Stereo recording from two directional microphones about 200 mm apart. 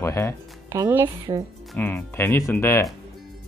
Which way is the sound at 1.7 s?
10° left (ahead or behind).